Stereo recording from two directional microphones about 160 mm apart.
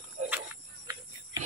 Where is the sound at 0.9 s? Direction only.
20° right (ahead or behind).